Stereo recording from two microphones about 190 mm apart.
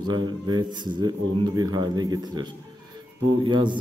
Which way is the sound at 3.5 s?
25° right (ahead or behind).